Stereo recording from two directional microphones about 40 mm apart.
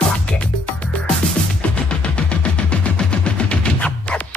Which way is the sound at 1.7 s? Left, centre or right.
Left.